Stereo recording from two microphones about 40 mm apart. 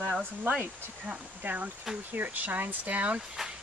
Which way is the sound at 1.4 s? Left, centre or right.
Right.